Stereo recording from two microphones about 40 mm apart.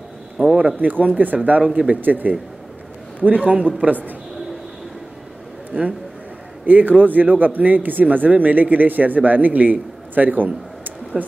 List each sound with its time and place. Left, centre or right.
0.6 s speech: right
1.6 s speech: right
2.0 s speech: right
3.3 s speech: right
5.7 s speech: right